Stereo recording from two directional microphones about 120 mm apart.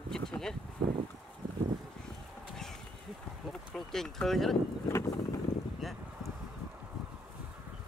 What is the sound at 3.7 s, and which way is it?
Speech, 5° left (ahead or behind).